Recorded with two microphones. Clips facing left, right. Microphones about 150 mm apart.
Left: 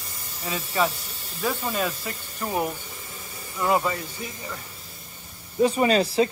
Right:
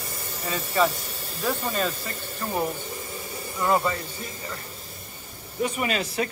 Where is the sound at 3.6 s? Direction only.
5° left (ahead or behind).